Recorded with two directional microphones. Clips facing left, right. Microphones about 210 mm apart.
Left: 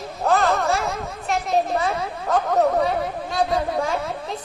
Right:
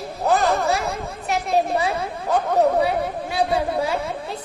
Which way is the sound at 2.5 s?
10° right (ahead or behind).